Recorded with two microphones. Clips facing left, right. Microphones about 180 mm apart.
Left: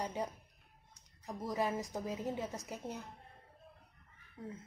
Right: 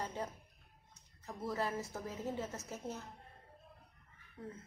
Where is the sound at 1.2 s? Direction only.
15° left (ahead or behind).